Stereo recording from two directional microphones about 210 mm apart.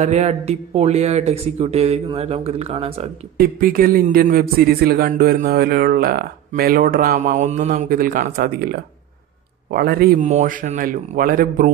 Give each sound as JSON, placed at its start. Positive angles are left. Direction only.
{"t": 0.0, "sound": "speech", "side_deg": -30}